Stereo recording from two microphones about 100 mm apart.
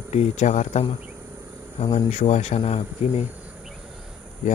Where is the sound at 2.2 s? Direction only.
90° left.